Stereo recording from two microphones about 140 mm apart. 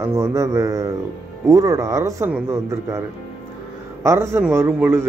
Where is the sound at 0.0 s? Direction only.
20° right (ahead or behind).